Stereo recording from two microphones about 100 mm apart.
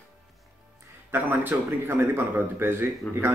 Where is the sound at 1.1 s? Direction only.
20° right (ahead or behind).